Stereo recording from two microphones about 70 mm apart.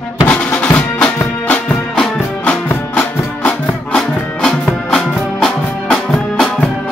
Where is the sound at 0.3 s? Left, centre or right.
Left.